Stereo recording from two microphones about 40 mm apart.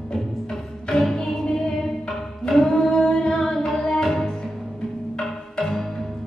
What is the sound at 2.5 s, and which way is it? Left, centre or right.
Music, centre.